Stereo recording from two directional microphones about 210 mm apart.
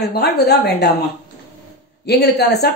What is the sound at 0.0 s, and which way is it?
Speech, 50° left (ahead or behind).